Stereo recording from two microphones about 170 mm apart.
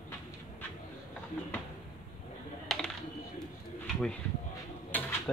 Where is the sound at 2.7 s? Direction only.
Centre (ahead or behind).